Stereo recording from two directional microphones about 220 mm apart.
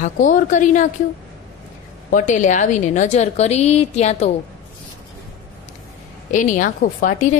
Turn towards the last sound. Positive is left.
turn(degrees=35)  # may be behind; listen again after turning